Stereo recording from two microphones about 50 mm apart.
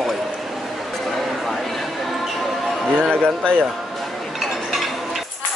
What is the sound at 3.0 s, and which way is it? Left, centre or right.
Speech, centre.